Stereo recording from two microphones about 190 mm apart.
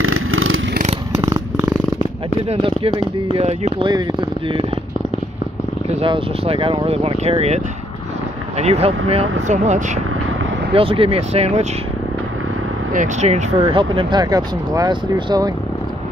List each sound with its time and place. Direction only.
0.0 s vehicle: 90° right
1.2 s purr: 15° right (ahead or behind)
2.4 s speech: 30° right (ahead or behind)
5.9 s speech: 30° right (ahead or behind)
12.9 s speech: 40° right (ahead or behind); by 15.5 s 20° right (ahead or behind)